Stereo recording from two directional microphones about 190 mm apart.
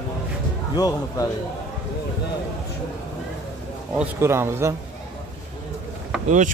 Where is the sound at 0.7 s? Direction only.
20° left (ahead or behind).